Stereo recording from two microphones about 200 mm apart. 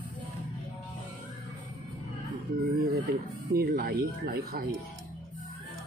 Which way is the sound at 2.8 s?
50° right (ahead or behind).